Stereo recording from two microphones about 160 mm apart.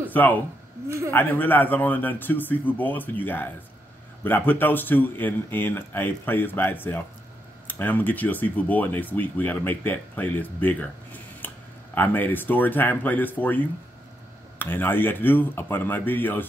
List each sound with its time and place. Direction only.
0.1 s speech: 10° left (ahead or behind)
0.8 s speech: 20° right (ahead or behind)
1.1 s speech: 10° left (ahead or behind)